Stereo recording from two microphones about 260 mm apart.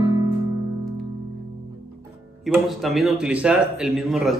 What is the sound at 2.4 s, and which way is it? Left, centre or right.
A man's voice, centre.